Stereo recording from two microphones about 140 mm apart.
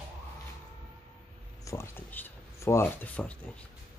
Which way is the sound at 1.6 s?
20° left (ahead or behind).